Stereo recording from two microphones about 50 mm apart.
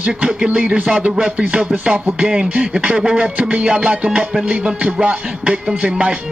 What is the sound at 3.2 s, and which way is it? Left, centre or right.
Speech, right.